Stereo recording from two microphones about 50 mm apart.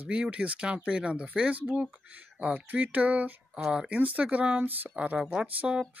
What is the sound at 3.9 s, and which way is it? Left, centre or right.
Speech, right.